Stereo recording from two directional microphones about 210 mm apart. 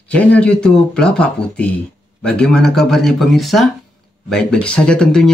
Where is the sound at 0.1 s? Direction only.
5° left (ahead or behind).